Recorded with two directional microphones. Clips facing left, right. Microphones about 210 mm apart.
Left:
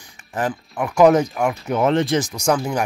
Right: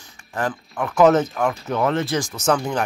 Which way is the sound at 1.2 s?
Centre (ahead or behind).